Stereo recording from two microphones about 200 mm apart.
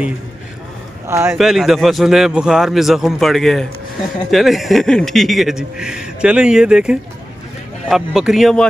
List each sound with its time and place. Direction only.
1.0 s a man's voice: 15° right (ahead or behind)
1.3 s speech: centre (ahead or behind)